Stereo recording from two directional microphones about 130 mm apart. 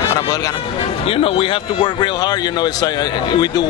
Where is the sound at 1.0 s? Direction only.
45° left (ahead or behind).